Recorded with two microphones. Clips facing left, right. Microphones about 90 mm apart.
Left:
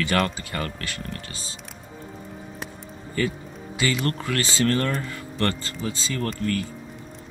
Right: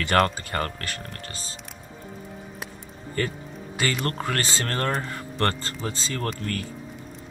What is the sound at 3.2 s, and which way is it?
Speech, 50° right (ahead or behind).